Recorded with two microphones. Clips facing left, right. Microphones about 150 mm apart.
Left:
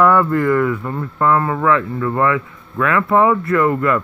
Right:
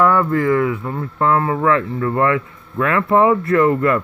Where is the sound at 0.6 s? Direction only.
15° right (ahead or behind).